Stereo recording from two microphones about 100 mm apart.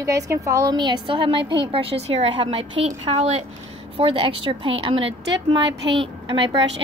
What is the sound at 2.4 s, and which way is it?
Speech, 65° right (ahead or behind).